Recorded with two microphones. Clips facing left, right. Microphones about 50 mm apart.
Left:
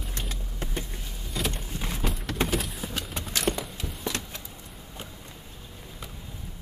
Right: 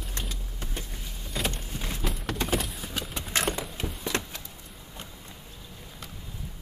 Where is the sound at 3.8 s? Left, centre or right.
Centre.